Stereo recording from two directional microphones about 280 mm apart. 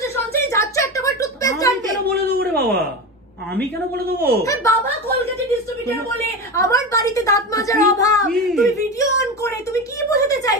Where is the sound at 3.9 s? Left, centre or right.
Right.